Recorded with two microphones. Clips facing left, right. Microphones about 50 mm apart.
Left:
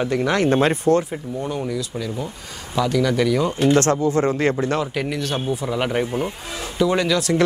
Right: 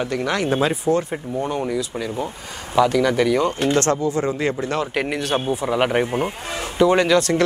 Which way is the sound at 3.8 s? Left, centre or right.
Left.